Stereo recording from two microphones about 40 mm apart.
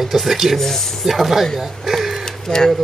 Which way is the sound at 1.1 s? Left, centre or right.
Centre.